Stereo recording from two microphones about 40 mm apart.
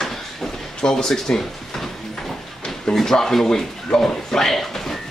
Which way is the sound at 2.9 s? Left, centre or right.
Centre.